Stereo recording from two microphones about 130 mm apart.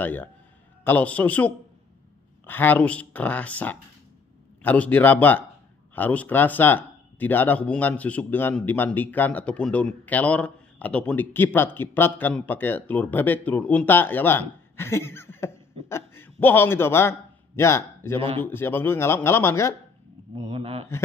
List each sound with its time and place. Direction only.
0.0 s speech: 15° left (ahead or behind)
20.3 s speech: 55° right (ahead or behind)